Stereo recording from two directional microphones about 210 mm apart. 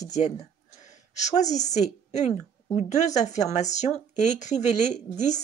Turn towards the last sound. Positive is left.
turn(degrees=35)  # may be behind; listen again after turning